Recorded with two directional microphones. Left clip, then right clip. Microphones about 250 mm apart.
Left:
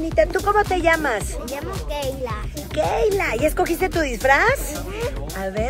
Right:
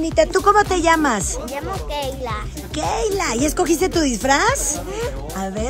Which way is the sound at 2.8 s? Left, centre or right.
Centre.